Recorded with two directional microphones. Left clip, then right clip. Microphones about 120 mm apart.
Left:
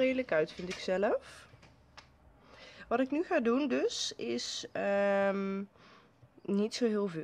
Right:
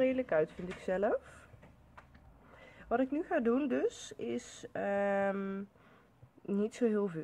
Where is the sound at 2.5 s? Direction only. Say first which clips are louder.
Left 1 dB; 35° left (ahead or behind).